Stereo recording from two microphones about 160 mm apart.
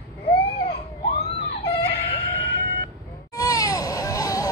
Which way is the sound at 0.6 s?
35° left (ahead or behind).